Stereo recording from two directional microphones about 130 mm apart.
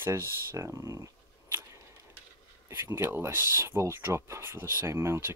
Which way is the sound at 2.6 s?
20° right (ahead or behind).